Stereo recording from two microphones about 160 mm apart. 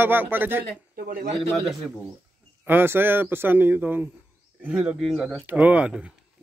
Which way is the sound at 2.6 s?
15° right (ahead or behind).